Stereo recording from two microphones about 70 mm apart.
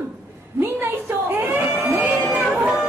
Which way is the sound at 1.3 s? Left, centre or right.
Right.